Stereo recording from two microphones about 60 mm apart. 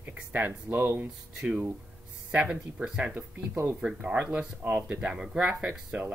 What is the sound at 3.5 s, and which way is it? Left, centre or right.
Speech, right.